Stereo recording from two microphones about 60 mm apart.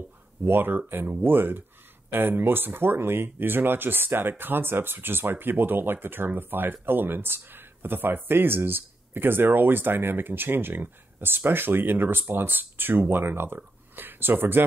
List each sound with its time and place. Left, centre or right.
0.4 s speech: right